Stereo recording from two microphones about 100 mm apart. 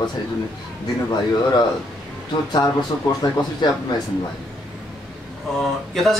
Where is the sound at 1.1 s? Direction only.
45° left (ahead or behind).